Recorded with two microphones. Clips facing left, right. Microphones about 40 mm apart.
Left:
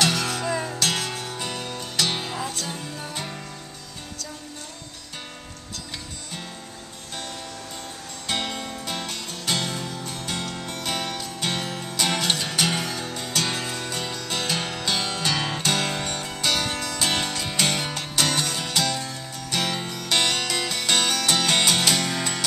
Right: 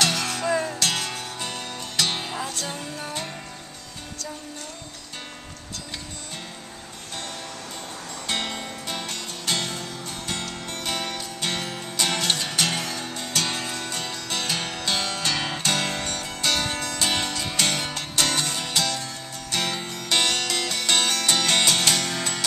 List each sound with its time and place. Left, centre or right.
0.0 s music: centre
8.3 s music: centre